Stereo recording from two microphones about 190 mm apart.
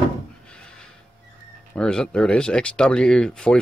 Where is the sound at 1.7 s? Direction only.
5° left (ahead or behind).